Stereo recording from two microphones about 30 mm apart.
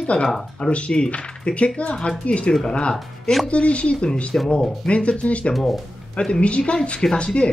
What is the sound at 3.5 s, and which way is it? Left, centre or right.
Speech, left.